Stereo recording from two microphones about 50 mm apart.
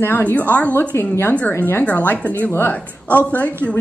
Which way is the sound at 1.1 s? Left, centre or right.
Left.